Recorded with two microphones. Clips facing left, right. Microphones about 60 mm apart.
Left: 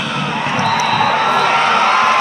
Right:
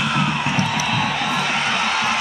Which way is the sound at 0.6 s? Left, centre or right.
Left.